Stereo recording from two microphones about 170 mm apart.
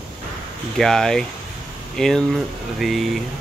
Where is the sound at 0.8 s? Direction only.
Centre (ahead or behind).